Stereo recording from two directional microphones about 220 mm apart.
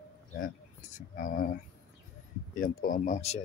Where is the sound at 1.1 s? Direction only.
40° left (ahead or behind).